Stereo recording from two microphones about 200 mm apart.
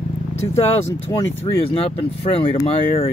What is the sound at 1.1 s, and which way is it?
Speech, 25° left (ahead or behind).